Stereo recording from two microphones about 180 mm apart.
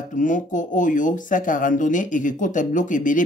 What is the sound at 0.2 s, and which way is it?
Speech, 45° left (ahead or behind).